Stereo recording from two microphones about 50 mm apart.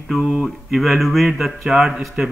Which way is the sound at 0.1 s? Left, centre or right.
Centre.